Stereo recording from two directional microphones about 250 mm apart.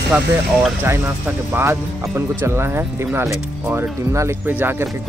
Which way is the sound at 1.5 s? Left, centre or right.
Centre.